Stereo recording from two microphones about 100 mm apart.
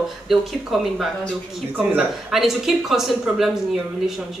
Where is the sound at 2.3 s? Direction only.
5° right (ahead or behind).